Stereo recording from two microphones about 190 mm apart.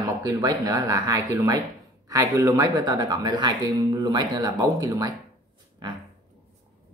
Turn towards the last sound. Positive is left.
turn(degrees=-25)  # may be behind; listen again after turning